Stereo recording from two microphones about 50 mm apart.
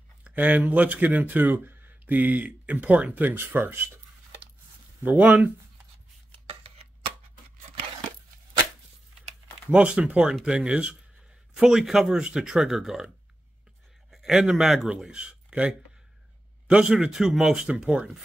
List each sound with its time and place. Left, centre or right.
0.2 s speech: right
5.0 s speech: right
9.7 s speech: right
14.1 s a man's voice: centre
17.1 s speech: centre
17.6 s speech: right